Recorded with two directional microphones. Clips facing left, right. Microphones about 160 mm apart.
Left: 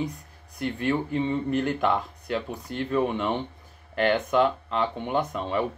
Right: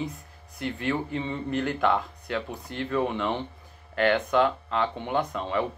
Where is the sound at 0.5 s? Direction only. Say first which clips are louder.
Left 2 dB; 40° left (ahead or behind).